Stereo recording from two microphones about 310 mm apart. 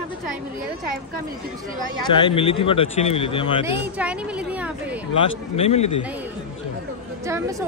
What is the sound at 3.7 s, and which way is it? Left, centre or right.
A woman's voice, centre.